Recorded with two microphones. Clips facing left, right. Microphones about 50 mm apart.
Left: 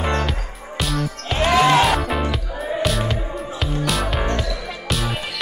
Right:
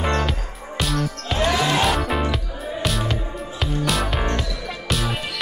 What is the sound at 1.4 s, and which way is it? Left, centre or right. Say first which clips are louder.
Music: left 5 dB; left.